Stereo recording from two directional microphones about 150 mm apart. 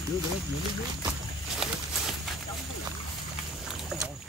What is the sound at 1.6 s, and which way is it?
Walk, 5° right (ahead or behind).